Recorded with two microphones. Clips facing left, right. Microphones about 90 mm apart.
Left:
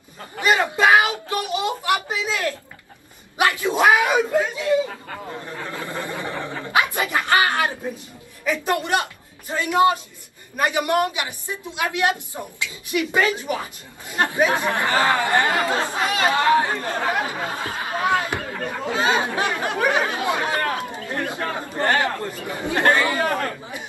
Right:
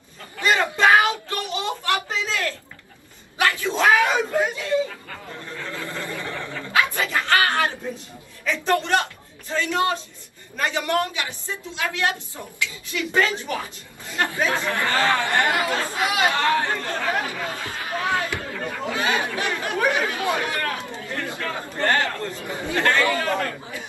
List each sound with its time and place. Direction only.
0.4 s a sound: 15° left (ahead or behind)
4.8 s a sound: 25° left (ahead or behind)
9.5 s a man's voice: 15° left (ahead or behind)
16.0 s speech: 10° right (ahead or behind)
16.3 s speech: 15° left (ahead or behind)
18.7 s chatter: 25° left (ahead or behind)
22.4 s speech: 20° left (ahead or behind)